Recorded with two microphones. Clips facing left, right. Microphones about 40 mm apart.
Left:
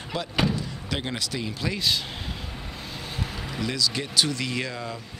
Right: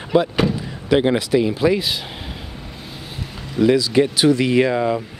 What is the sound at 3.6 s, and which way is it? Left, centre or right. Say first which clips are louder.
Speech: right 14 dB; right.